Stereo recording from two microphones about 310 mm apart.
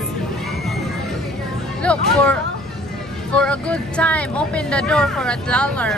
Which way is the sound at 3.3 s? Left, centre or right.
Centre.